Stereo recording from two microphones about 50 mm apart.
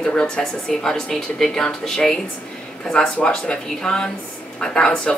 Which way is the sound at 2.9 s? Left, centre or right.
Left.